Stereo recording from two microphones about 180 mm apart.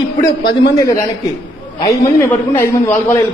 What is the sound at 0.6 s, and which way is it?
A man's voice, 20° left (ahead or behind).